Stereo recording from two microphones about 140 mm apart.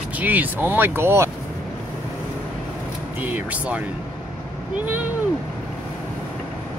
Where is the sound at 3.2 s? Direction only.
10° right (ahead or behind).